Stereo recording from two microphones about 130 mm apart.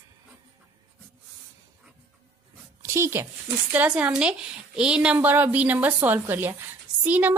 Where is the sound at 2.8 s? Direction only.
20° right (ahead or behind).